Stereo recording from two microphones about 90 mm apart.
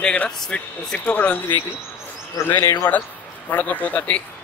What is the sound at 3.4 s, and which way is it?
Speech, 20° left (ahead or behind).